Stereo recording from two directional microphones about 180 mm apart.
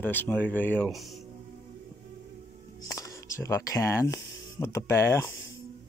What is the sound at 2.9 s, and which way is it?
Speech, 20° left (ahead or behind).